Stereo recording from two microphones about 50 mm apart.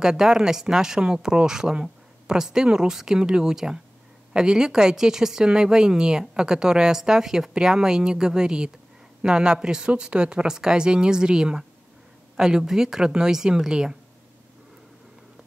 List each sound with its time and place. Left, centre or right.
0.0 s a woman's voice: centre